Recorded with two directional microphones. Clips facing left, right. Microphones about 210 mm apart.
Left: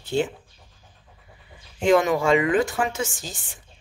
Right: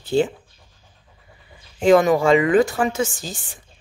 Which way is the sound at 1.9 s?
35° right (ahead or behind).